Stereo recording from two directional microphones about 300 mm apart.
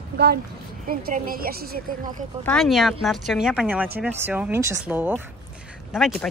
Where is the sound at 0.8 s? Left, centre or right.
Right.